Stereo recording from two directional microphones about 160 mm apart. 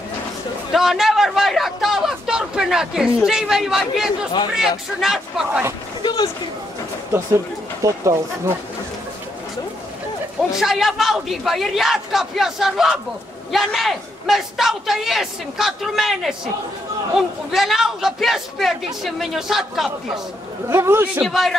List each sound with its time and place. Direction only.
0.7 s a man's voice: centre (ahead or behind)
6.0 s speech: 25° left (ahead or behind)
7.1 s speech: 15° right (ahead or behind)
10.6 s a man's voice: centre (ahead or behind)
20.6 s speech: 15° right (ahead or behind)
21.2 s a man's voice: centre (ahead or behind)